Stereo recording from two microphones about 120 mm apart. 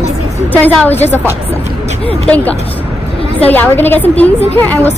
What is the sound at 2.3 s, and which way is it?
A woman's voice, 10° left (ahead or behind).